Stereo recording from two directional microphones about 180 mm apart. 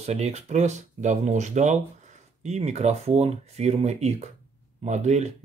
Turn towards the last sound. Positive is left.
turn(degrees=-40)  # may be behind; listen again after turning